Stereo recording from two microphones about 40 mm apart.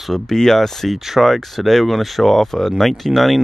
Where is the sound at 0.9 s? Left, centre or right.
Centre.